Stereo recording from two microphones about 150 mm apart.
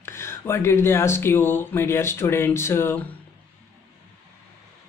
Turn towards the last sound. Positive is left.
turn(degrees=15)  # may be behind; listen again after turning